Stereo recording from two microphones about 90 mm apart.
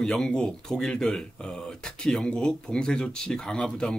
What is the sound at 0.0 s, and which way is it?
Speech, 10° left (ahead or behind).